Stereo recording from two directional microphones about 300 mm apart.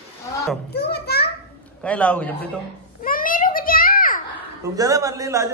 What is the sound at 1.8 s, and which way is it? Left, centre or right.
Speech, centre.